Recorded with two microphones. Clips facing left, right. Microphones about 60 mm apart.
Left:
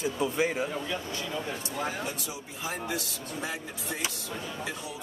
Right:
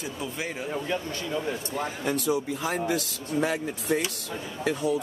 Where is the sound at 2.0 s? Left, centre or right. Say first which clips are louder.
Right 11 dB; right.